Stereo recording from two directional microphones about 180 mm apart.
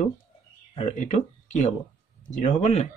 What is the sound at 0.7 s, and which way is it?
Speech, 40° left (ahead or behind).